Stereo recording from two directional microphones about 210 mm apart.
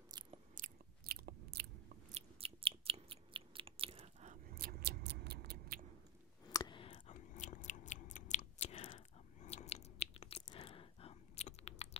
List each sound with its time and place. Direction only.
0.1 s biting: 20° right (ahead or behind)
0.6 s biting: 45° right (ahead or behind)
2.0 s chewing: 30° right (ahead or behind); by 5.9 s 45° right (ahead or behind)
6.5 s clicking: 20° left (ahead or behind)
7.2 s chewing: 35° left (ahead or behind)